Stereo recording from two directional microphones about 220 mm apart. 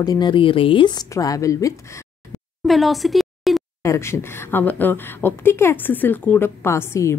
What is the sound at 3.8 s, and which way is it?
Speech, 10° left (ahead or behind).